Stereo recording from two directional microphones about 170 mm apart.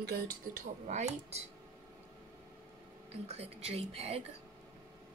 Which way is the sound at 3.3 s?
40° right (ahead or behind).